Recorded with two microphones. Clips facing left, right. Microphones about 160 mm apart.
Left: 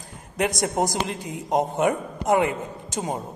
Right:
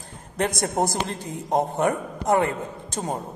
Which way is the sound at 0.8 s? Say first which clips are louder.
Right 1 dB; 15° left (ahead or behind).